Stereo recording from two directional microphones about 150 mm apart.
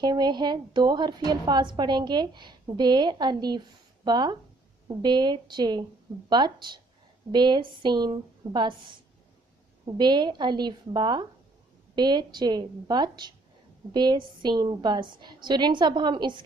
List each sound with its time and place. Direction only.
0.0 s a woman's voice: 30° right (ahead or behind)